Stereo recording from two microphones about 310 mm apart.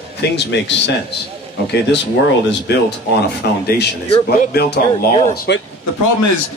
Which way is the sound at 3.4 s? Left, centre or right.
Left.